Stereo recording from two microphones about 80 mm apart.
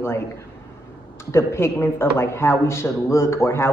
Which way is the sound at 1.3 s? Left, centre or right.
Left.